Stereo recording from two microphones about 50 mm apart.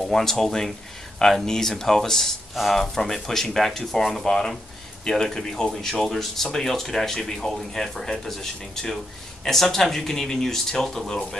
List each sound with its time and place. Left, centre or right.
0.1 s speech: centre